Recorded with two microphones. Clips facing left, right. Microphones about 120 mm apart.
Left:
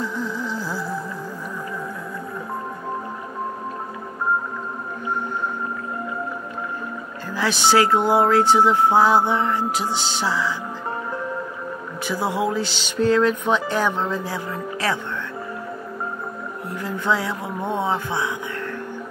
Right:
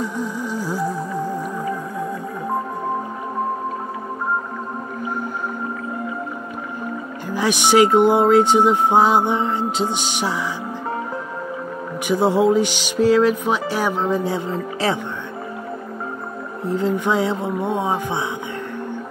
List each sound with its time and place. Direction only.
0.0 s music: 15° right (ahead or behind)
7.2 s speech: 15° right (ahead or behind)
12.1 s speech: 25° right (ahead or behind)
14.0 s speech: 20° right (ahead or behind)
16.6 s speech: 25° right (ahead or behind)